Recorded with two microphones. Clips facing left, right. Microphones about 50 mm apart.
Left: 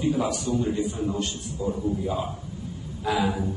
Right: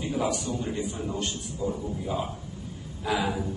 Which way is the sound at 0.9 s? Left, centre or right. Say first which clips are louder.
Left 4 dB; left.